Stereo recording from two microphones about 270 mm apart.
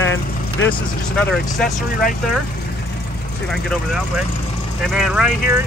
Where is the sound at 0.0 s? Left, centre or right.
Left.